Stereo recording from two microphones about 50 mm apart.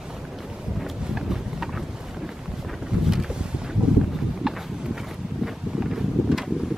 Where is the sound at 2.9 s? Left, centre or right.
Centre.